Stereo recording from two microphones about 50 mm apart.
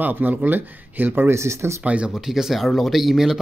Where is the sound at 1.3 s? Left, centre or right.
Right.